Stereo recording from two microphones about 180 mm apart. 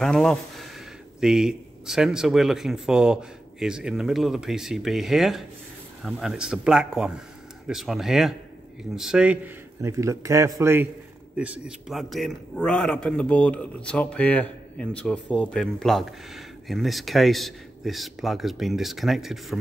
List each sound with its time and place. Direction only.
0.0 s speech: centre (ahead or behind)
9.8 s a man's voice: 15° right (ahead or behind); by 19.6 s centre (ahead or behind)